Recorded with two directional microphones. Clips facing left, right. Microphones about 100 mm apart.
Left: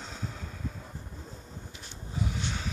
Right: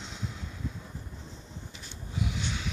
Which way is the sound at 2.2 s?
40° left (ahead or behind).